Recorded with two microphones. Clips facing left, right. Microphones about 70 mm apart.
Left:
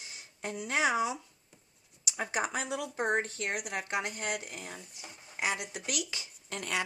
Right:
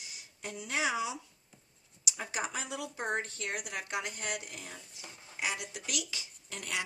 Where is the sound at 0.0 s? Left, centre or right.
Left.